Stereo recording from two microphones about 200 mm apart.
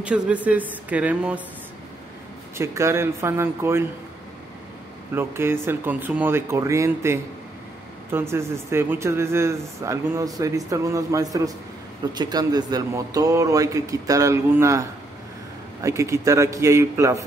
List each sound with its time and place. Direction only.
0.0 s speech: 5° right (ahead or behind)
2.5 s speech: 15° right (ahead or behind)
5.1 s speech: 10° right (ahead or behind)